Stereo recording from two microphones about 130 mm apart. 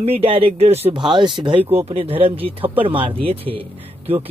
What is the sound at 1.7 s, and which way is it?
Speech, 50° right (ahead or behind).